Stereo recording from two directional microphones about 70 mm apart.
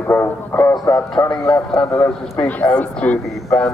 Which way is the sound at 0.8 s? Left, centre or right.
Left.